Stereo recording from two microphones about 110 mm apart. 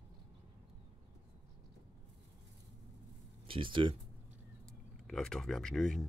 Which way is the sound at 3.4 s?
50° right (ahead or behind).